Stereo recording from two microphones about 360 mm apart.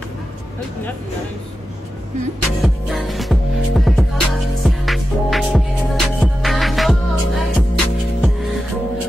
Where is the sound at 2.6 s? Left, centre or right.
Centre.